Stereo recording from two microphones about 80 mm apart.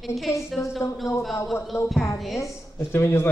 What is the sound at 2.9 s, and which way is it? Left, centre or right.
Speech, left.